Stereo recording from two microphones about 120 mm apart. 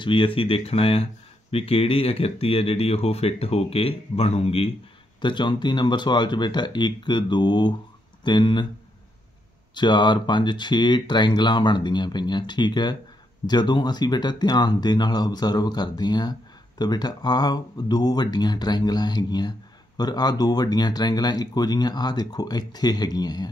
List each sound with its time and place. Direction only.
0.0 s speech: 45° left (ahead or behind)
5.2 s speech: 40° left (ahead or behind)
9.8 s speech: 40° left (ahead or behind)